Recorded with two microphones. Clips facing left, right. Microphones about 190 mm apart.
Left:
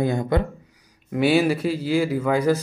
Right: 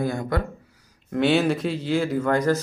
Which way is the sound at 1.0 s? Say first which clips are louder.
Left 1 dB; 10° left (ahead or behind).